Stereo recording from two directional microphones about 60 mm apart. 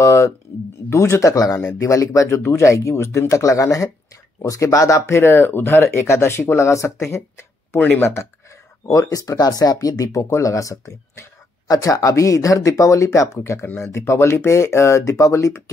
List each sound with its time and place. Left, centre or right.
0.0 s a sound: left
0.8 s speech: left
1.3 s speech: left
5.1 s speech: left
5.9 s speech: left
8.8 s speech: left
10.3 s speech: left
13.4 s speech: left